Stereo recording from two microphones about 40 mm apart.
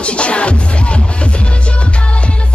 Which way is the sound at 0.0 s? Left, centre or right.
Left.